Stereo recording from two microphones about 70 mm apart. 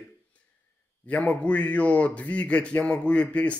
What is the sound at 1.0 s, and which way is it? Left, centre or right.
A man's voice, centre.